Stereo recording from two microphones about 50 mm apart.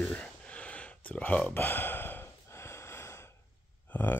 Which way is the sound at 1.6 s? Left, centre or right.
Left.